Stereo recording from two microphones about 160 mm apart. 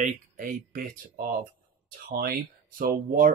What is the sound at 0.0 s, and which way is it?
Speech, 60° right (ahead or behind).